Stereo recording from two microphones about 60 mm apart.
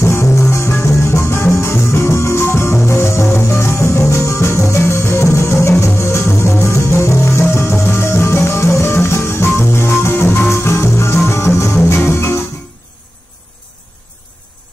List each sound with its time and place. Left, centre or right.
0.0 s music: left